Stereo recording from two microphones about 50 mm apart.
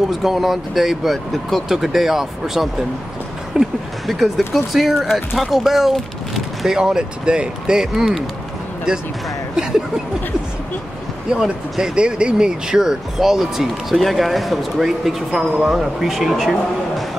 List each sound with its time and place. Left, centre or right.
0.2 s speech: centre
6.9 s speech: centre
9.6 s speech: centre
11.3 s speech: centre